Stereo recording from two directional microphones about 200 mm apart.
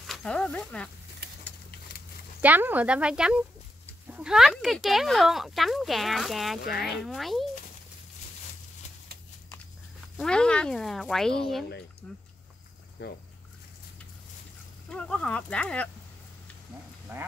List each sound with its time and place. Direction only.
0.0 s speech: centre (ahead or behind)
2.4 s speech: 10° right (ahead or behind)
10.1 s speech: 5° left (ahead or behind)
13.0 s speech: 55° left (ahead or behind)
14.9 s speech: 5° left (ahead or behind)
17.1 s speech: 10° right (ahead or behind)